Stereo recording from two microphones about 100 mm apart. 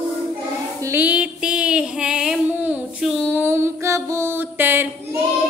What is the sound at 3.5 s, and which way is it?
Mantra, 25° right (ahead or behind).